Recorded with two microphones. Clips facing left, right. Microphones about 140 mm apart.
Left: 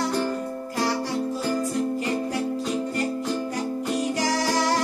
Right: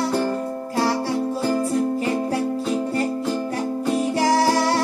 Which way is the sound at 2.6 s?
30° right (ahead or behind).